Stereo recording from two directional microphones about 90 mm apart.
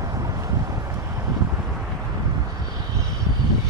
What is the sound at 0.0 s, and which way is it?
Vehicle, 40° right (ahead or behind).